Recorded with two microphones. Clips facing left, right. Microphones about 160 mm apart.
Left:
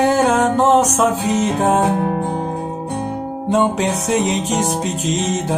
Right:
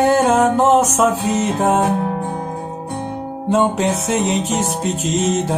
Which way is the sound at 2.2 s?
20° left (ahead or behind).